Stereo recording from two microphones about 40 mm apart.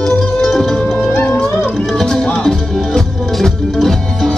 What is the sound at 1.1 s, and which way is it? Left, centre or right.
Music, left.